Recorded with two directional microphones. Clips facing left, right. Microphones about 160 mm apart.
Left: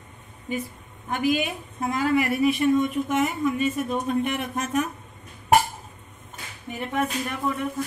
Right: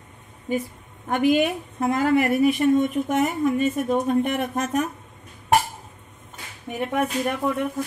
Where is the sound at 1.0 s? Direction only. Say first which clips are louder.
Right 5 dB; 60° right (ahead or behind); by 4.8 s 45° right (ahead or behind).